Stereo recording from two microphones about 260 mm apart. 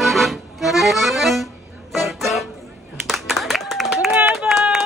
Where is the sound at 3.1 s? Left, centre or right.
Centre.